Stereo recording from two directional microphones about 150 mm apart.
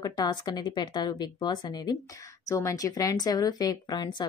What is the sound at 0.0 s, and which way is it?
A woman's voice, 30° left (ahead or behind).